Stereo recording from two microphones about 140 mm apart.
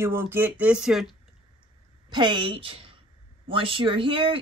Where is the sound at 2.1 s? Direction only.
30° right (ahead or behind).